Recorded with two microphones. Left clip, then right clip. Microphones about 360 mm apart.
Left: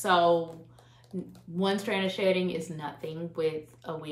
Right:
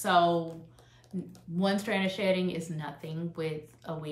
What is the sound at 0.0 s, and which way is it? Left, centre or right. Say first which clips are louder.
Speech: left 2 dB; centre.